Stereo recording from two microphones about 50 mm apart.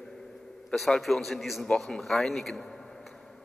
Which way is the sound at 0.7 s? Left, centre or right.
Centre.